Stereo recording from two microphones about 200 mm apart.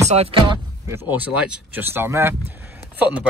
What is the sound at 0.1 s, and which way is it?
Speech, 30° right (ahead or behind).